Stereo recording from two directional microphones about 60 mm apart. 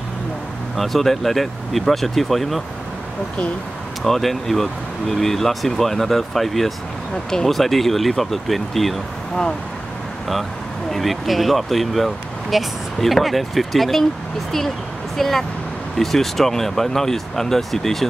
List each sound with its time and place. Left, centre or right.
0.7 s speech: centre
4.0 s speech: centre
10.9 s speech: centre
15.1 s speech: centre